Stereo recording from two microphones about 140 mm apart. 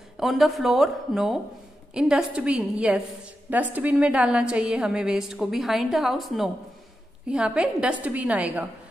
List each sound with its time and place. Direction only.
0.2 s a woman's voice: centre (ahead or behind)